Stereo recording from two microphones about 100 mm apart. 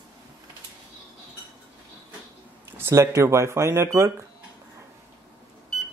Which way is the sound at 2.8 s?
30° right (ahead or behind).